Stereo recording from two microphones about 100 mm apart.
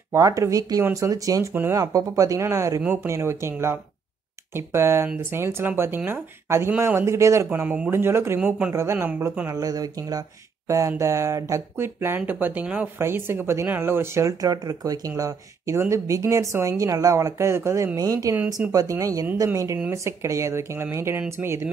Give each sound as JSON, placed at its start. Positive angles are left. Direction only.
{"t": 0.1, "sound": "speech", "side_deg": -35}
{"t": 2.8, "sound": "speech", "side_deg": -15}
{"t": 3.1, "sound": "speech", "side_deg": -25}
{"t": 7.5, "sound": "speech", "side_deg": -15}
{"t": 7.9, "sound": "speech", "side_deg": -25}
{"t": 9.5, "sound": "speech", "side_deg": -35}
{"t": 17.9, "sound": "speech", "side_deg": -35}
{"t": 18.3, "sound": "speech", "side_deg": -15}
{"t": 18.7, "sound": "speech", "side_deg": -35}